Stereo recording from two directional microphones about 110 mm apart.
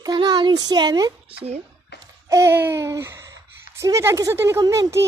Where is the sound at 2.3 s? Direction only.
25° right (ahead or behind).